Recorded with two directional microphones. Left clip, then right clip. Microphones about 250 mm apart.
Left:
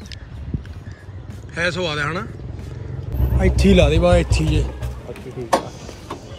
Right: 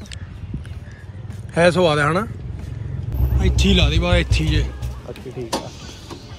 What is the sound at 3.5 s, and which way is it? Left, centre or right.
Speech, left.